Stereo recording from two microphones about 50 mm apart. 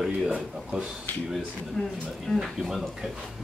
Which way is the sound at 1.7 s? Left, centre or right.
Centre.